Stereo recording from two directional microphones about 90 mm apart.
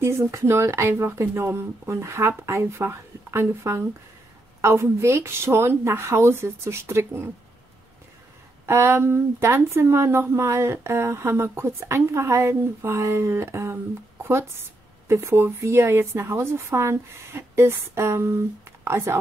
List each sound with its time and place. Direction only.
0.0 s speech: 30° right (ahead or behind)
8.6 s speech: 25° right (ahead or behind)